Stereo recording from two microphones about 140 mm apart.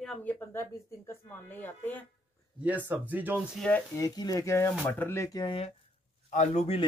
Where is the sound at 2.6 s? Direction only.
10° right (ahead or behind).